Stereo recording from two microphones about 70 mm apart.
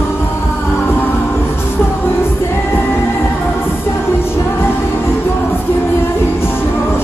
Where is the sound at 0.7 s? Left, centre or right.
Left.